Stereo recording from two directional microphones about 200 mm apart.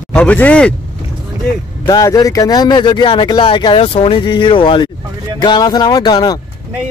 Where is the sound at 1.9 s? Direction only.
20° left (ahead or behind).